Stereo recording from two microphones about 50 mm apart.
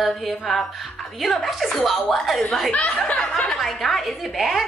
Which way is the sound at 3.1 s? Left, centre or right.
Centre.